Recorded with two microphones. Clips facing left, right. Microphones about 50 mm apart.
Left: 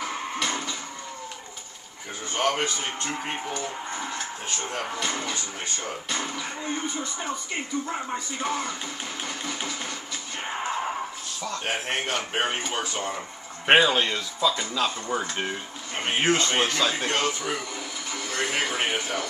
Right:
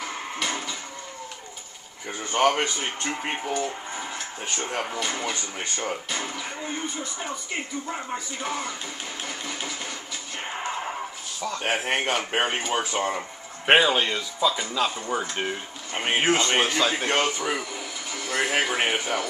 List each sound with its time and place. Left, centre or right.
0.0 s music: centre
2.3 s speech: centre
3.6 s a sound: centre
4.6 s speech: centre
10.4 s a sound: centre
11.6 s speech: centre
12.9 s speech: centre
13.7 s speech: centre
18.1 s music: centre